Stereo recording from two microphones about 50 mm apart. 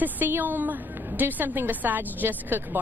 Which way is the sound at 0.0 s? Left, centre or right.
Right.